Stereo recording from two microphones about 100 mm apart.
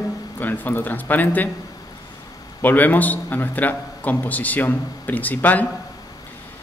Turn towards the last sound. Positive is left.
turn(degrees=15)  # may be behind; listen again after turning